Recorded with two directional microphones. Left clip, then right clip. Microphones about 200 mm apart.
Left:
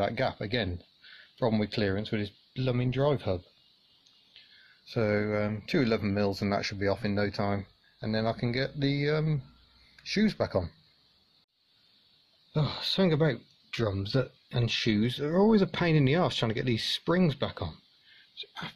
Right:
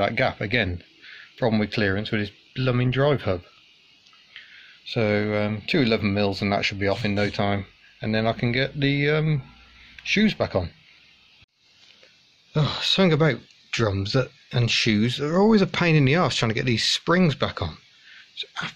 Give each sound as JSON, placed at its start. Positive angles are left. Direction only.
{"t": 0.0, "sound": "speech", "side_deg": 10}
{"t": 4.8, "sound": "speech", "side_deg": 15}
{"t": 12.5, "sound": "speech", "side_deg": 5}
{"t": 18.3, "sound": "sneeze", "side_deg": 10}